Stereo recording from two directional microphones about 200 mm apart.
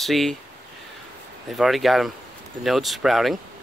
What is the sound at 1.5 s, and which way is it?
Speech, centre (ahead or behind).